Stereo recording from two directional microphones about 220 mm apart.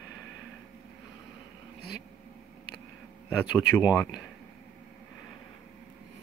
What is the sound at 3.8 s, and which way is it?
Speech, 15° left (ahead or behind).